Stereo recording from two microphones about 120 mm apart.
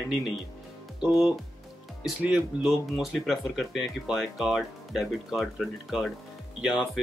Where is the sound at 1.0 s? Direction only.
5° right (ahead or behind).